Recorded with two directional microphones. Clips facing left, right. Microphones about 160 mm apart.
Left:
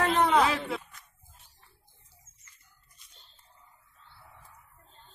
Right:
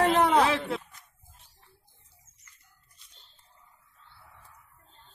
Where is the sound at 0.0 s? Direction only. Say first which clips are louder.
Right 2 dB; 35° right (ahead or behind).